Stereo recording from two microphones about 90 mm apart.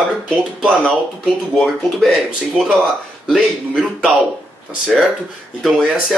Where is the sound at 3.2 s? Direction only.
5° right (ahead or behind).